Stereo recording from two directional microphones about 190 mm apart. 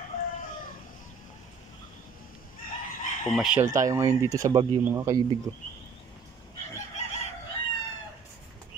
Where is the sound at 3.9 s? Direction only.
15° right (ahead or behind).